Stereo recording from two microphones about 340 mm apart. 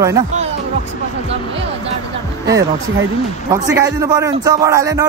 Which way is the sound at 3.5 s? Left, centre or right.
Centre.